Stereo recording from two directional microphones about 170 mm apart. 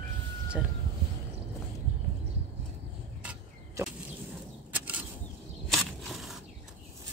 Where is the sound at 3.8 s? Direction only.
15° right (ahead or behind).